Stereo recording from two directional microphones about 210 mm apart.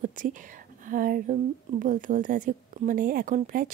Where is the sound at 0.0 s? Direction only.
40° right (ahead or behind).